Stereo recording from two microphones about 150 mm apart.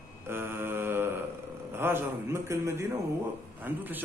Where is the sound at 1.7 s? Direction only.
15° right (ahead or behind).